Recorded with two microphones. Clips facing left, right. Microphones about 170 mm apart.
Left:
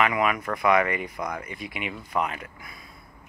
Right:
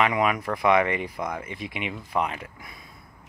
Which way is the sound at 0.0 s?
25° right (ahead or behind).